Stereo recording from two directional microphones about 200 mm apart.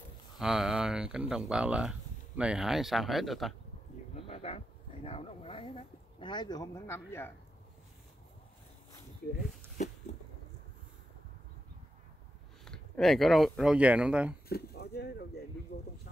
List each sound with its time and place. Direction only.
0.4 s speech: centre (ahead or behind)
4.1 s speech: 30° left (ahead or behind); by 7.3 s 10° left (ahead or behind)
12.6 s speech: 5° left (ahead or behind)
14.5 s speech: 50° left (ahead or behind)